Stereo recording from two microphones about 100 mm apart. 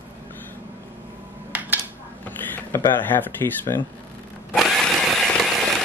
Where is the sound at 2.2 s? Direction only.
20° left (ahead or behind).